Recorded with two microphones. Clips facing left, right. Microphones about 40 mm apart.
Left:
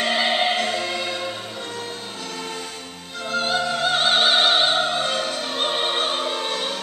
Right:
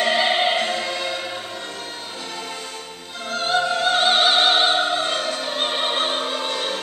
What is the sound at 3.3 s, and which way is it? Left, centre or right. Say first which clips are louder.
Opera: right 1 dB; centre.